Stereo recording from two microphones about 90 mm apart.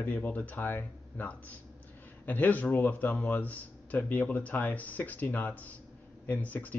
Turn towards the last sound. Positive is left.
turn(degrees=20)  # may be behind; listen again after turning